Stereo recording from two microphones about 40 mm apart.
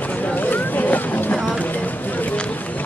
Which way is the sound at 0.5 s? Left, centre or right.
Left.